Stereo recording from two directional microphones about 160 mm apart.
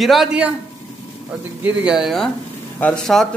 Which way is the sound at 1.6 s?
5° right (ahead or behind).